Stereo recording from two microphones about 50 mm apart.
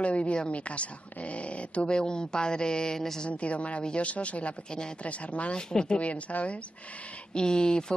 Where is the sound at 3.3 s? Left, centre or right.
Left.